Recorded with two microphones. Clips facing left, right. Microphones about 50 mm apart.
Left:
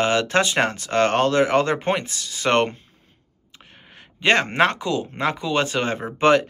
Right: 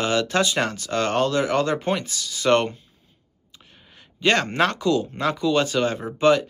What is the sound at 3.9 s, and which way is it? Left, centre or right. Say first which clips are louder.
Speech: left 2 dB; left.